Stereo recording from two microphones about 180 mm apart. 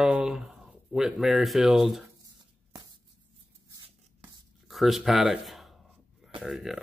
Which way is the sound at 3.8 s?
25° right (ahead or behind).